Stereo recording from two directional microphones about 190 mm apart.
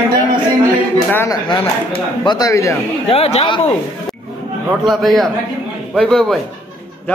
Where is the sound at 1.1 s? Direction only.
10° left (ahead or behind).